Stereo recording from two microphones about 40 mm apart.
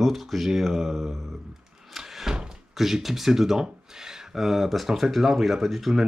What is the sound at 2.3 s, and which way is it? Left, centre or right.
Door, centre.